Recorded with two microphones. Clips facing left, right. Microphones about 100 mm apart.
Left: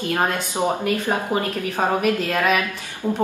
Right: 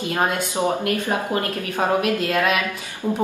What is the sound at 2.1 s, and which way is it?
Speech, 15° right (ahead or behind).